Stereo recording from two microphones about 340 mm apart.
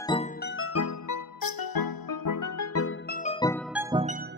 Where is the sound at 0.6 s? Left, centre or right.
Left.